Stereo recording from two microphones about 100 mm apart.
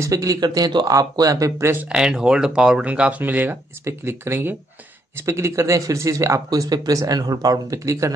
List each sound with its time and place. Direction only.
0.0 s speech: 35° right (ahead or behind)
1.9 s speech: 5° right (ahead or behind); by 8.1 s 30° right (ahead or behind)